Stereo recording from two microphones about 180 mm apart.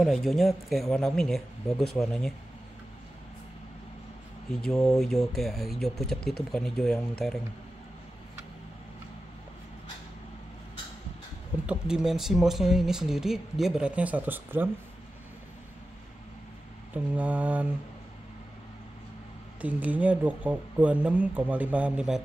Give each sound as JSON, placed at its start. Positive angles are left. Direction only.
{"t": 0.0, "sound": "speech", "side_deg": 0}
{"t": 4.5, "sound": "speech", "side_deg": 0}
{"t": 11.6, "sound": "speech", "side_deg": -5}
{"t": 16.9, "sound": "speech", "side_deg": -10}
{"t": 19.6, "sound": "speech", "side_deg": -10}